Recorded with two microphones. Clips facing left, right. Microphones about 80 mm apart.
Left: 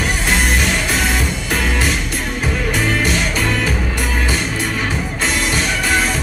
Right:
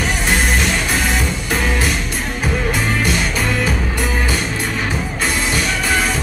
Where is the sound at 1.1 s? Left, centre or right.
Right.